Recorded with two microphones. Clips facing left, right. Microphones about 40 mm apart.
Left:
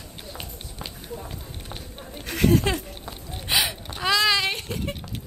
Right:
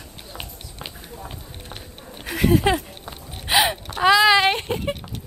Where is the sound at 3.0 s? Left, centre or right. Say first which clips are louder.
Right 2 dB; right.